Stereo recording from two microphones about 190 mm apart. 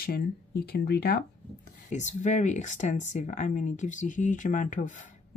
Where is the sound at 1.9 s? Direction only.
40° left (ahead or behind).